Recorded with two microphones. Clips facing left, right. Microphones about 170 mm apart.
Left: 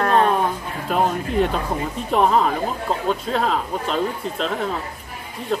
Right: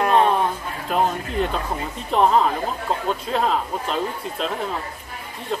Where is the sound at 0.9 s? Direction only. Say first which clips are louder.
Left 2 dB; centre (ahead or behind).